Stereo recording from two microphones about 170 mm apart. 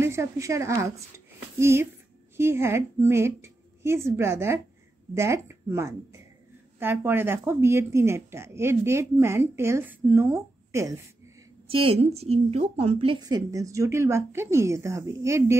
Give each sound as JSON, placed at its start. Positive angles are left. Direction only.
{"t": 0.0, "sound": "a woman's voice", "side_deg": -15}
{"t": 11.6, "sound": "a woman's voice", "side_deg": -35}